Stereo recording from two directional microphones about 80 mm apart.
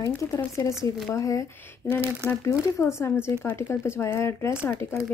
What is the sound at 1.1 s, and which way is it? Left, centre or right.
Speech, left.